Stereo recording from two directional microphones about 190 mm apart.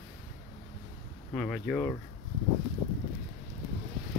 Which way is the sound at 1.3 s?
Centre (ahead or behind).